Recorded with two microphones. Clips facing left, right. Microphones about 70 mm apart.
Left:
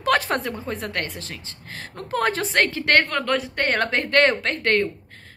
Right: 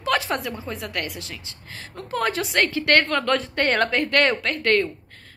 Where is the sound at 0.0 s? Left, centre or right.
Left.